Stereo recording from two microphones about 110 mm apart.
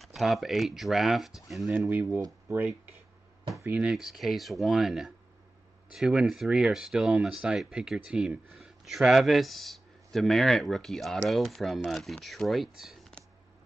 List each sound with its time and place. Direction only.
0.0 s speech: centre (ahead or behind)
1.7 s speech: 15° right (ahead or behind)
3.6 s speech: 10° right (ahead or behind)